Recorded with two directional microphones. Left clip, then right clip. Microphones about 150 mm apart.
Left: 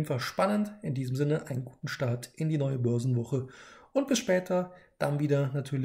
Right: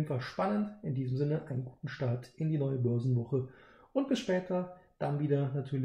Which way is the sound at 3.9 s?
20° left (ahead or behind).